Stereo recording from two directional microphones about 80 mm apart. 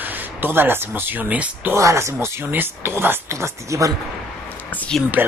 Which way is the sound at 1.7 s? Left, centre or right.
Right.